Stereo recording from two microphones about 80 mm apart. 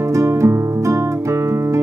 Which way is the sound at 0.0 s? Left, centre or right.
Right.